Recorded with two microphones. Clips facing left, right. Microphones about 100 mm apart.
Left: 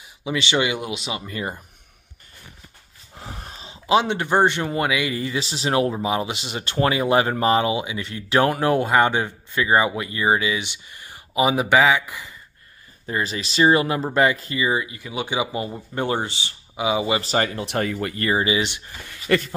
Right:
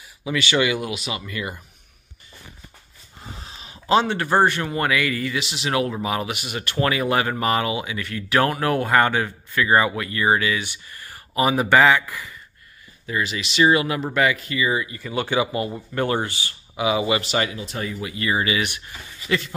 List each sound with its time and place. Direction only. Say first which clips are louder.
0.2 s speech: right 1 dB; 25° left (ahead or behind)
3.2 s a sound: left 3 dB; 65° left (ahead or behind)
3.5 s a sound: left 2 dB; 25° left (ahead or behind)
3.8 s speech: even; 15° left (ahead or behind)
13.0 s speech: even; 35° left (ahead or behind)
14.9 s speech: right 3 dB; 15° left (ahead or behind); by 17.5 s 35° left (ahead or behind)
17.5 s speech: left 5 dB; 65° left (ahead or behind)
18.3 s speech: left 1 dB; 25° left (ahead or behind)
19.0 s speech: left 4 dB; 55° left (ahead or behind)